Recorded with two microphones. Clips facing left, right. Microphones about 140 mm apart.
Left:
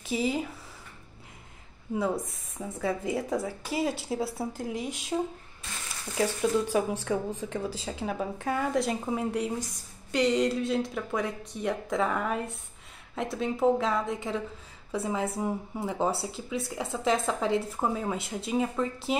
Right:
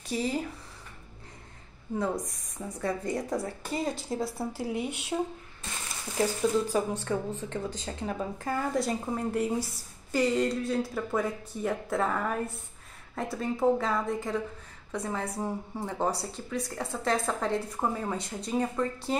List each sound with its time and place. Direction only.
0.0 s speech: centre (ahead or behind)
2.0 s speech: centre (ahead or behind)
4.5 s speech: 10° right (ahead or behind)
4.7 s speech: 65° right (ahead or behind)
6.1 s speech: centre (ahead or behind)